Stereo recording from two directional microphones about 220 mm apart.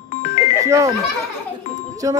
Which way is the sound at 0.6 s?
15° right (ahead or behind).